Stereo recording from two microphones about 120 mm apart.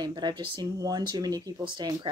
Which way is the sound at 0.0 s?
40° right (ahead or behind).